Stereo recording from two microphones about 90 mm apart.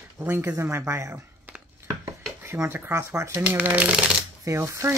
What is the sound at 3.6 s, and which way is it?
Speech, 15° right (ahead or behind).